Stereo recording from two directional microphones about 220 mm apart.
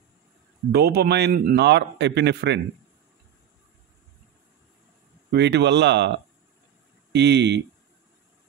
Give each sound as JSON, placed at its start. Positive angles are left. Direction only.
{"t": 0.7, "sound": "a man's voice", "side_deg": -45}
{"t": 5.3, "sound": "a man's voice", "side_deg": -50}